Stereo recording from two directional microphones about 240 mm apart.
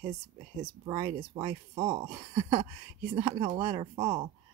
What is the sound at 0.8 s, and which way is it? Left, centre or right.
Speech, right.